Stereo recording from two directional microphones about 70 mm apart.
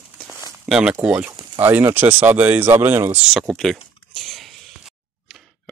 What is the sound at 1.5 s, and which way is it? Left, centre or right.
Speech, right.